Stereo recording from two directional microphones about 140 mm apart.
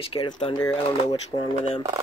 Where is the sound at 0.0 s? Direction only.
40° left (ahead or behind).